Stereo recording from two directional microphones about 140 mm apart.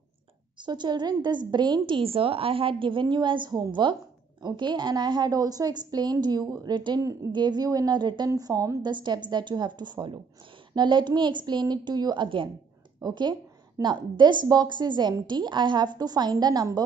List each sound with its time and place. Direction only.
0.6 s a woman's voice: 30° right (ahead or behind)